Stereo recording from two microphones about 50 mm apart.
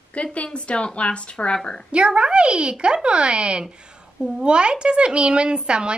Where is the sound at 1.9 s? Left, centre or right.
Centre.